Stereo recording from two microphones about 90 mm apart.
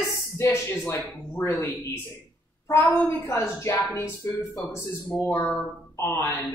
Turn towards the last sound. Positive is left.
turn(degrees=25)  # may be behind; listen again after turning